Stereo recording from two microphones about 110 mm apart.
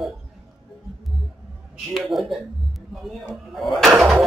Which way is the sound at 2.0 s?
Centre (ahead or behind).